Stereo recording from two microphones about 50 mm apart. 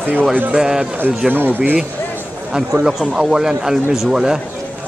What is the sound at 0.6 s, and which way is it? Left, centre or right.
Speech, centre.